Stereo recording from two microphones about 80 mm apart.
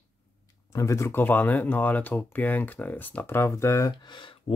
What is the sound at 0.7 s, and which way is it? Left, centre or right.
Speech, left.